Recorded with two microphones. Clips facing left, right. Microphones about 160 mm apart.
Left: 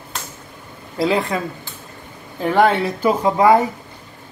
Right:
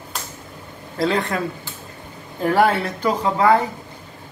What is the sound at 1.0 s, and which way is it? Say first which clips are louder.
Speech: left 2 dB; centre (ahead or behind).